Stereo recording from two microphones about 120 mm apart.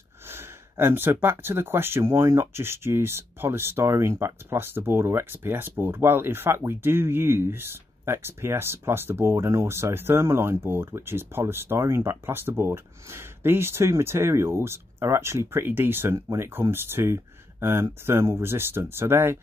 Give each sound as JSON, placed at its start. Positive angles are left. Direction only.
{"t": 0.3, "sound": "speech", "side_deg": -20}